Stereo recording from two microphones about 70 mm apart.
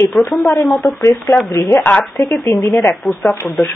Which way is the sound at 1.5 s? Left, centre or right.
Left.